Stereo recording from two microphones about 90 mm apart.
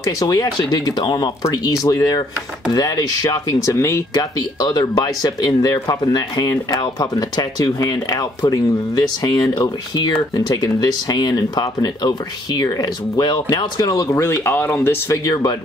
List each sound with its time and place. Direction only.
0.0 s speech: 40° left (ahead or behind)
3.6 s speech: 30° left (ahead or behind)
4.2 s speech: 50° left (ahead or behind)
14.1 s speech: 30° left (ahead or behind)
15.2 s speech: 55° left (ahead or behind)